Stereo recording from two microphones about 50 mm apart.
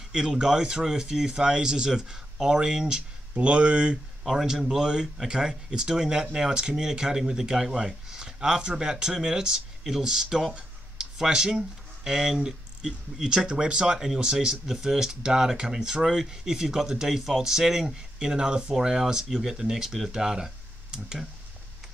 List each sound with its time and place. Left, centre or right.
0.1 s speech: centre
4.2 s speech: centre